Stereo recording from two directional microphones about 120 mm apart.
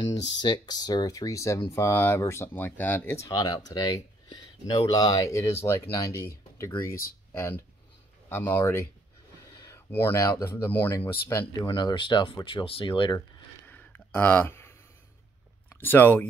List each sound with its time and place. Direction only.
0.0 s speech: 40° left (ahead or behind)
7.3 s speech: 20° left (ahead or behind)
11.6 s speech: 40° left (ahead or behind)
13.7 s a sound: 15° left (ahead or behind)
15.7 s speech: 15° left (ahead or behind)